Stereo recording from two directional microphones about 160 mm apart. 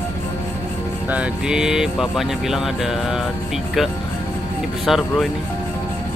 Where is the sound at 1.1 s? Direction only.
5° right (ahead or behind).